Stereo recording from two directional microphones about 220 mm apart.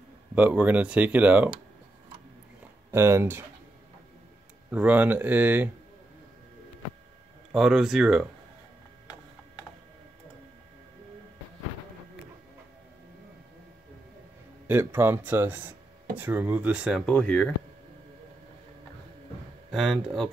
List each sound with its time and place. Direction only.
0.3 s speech: 5° right (ahead or behind)
2.9 s speech: 10° right (ahead or behind)
4.6 s speech: 5° right (ahead or behind)
7.5 s speech: centre (ahead or behind)
14.7 s speech: 10° right (ahead or behind); by 17.5 s 5° left (ahead or behind)
19.7 s speech: centre (ahead or behind)